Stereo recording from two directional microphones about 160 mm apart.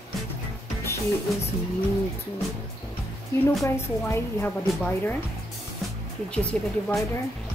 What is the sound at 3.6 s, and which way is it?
A woman's voice, 15° left (ahead or behind).